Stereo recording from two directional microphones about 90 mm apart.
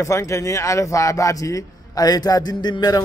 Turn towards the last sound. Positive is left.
turn(degrees=50)  # may be behind; listen again after turning